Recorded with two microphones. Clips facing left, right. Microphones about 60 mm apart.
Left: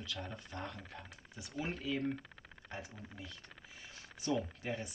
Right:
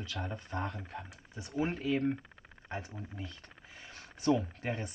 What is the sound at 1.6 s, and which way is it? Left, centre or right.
Speech, right.